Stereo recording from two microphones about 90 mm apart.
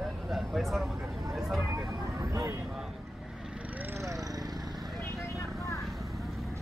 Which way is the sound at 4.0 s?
35° right (ahead or behind).